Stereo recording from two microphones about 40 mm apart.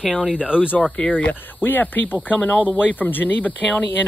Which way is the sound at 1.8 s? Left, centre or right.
Left.